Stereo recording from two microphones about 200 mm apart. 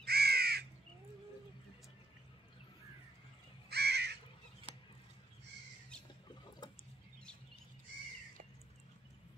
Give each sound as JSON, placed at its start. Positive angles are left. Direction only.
{"t": 0.0, "sound": "crow", "side_deg": -50}
{"t": 3.6, "sound": "crow", "side_deg": -55}
{"t": 6.2, "sound": "a sound", "side_deg": 20}